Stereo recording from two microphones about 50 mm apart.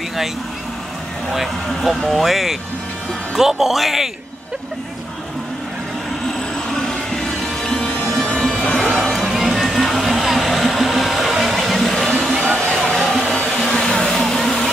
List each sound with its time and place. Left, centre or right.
1.3 s a man's voice: centre
6.9 s music: centre
8.5 s music: left
8.7 s a sound: centre
12.7 s vehicle: centre